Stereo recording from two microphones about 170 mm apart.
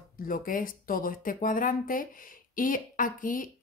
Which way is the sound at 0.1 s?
55° left (ahead or behind).